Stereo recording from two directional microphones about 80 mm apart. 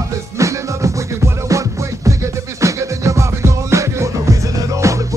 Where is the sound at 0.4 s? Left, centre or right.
Right.